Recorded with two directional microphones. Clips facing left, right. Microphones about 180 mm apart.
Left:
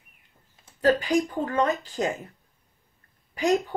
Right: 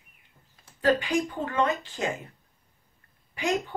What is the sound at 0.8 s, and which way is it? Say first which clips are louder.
A woman's voice: left 2 dB; 35° left (ahead or behind).